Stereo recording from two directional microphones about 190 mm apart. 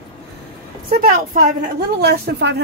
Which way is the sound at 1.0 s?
45° right (ahead or behind).